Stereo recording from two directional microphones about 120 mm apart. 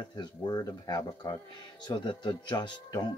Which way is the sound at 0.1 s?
35° left (ahead or behind).